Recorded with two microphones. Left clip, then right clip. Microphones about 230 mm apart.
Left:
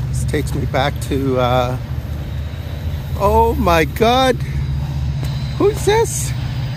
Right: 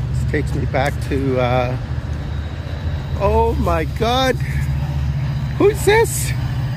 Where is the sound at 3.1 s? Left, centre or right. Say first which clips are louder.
Left 3 dB; left.